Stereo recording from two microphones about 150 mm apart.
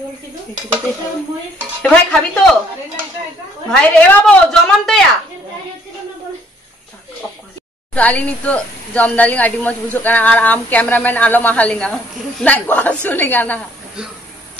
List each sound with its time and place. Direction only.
1.8 s a woman's voice: 10° left (ahead or behind)
3.7 s a woman's voice: 5° left (ahead or behind)
7.9 s a woman's voice: 10° left (ahead or behind)